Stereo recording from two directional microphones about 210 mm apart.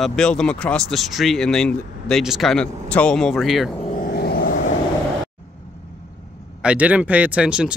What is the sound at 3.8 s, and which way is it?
Vehicle, 40° left (ahead or behind).